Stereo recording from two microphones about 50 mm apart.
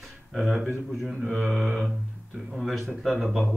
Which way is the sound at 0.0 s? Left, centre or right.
Centre.